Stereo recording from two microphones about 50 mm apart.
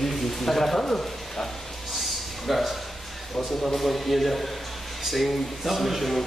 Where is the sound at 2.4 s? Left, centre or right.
Centre.